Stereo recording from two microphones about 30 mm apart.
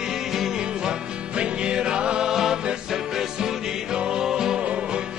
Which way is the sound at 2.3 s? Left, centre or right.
Centre.